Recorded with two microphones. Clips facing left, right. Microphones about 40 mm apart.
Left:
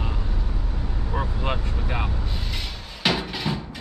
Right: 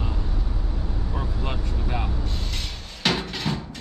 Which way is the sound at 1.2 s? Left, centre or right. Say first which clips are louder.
Left 5 dB; left.